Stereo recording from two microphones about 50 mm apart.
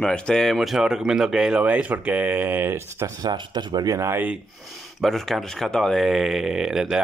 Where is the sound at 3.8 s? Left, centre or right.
Right.